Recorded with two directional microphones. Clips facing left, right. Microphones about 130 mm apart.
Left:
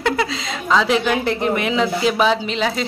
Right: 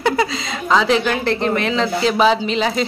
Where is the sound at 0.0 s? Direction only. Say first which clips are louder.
Right 2 dB; centre (ahead or behind).